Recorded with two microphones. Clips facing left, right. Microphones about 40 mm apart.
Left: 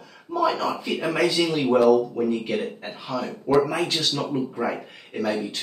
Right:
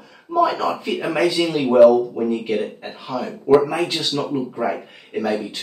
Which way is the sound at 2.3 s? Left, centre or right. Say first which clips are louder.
Right 3 dB; centre.